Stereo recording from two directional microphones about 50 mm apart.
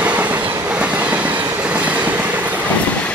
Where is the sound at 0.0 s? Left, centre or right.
Right.